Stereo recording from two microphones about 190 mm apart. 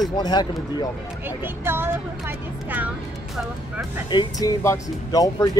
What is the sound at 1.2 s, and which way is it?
Speech, 10° right (ahead or behind).